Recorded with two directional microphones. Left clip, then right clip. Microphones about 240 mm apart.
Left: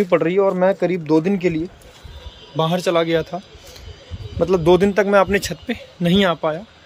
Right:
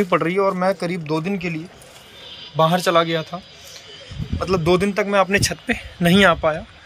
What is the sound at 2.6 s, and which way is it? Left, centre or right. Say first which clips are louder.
Speech: right 2 dB; centre.